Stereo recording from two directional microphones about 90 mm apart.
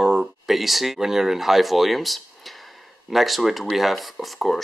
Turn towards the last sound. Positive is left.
turn(degrees=0)  # may be behind; listen again after turning